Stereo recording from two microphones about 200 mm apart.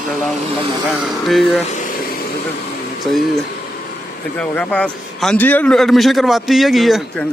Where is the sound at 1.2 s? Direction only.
Centre (ahead or behind).